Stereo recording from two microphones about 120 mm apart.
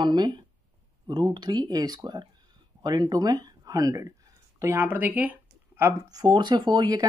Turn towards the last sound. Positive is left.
turn(degrees=-35)  # may be behind; listen again after turning